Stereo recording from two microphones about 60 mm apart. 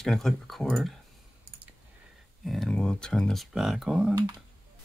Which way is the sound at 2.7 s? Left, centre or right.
Centre.